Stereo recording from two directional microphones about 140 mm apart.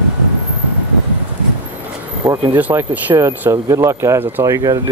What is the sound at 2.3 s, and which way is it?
Speech, 15° right (ahead or behind).